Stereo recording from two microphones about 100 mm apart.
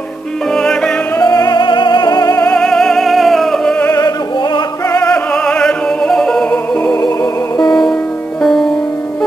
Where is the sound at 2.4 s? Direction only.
10° left (ahead or behind).